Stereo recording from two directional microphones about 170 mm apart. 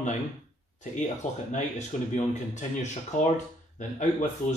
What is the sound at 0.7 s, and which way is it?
Speech, 45° left (ahead or behind).